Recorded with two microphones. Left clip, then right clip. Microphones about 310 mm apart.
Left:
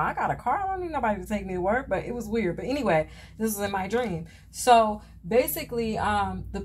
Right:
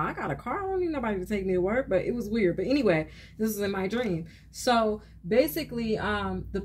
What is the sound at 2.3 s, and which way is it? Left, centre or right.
Speech, centre.